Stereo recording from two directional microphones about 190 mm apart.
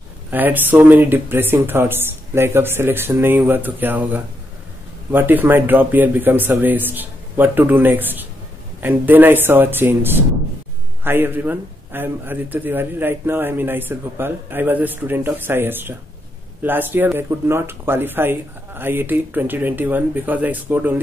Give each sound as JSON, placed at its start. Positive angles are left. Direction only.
{"t": 0.3, "sound": "a man's voice", "side_deg": -10}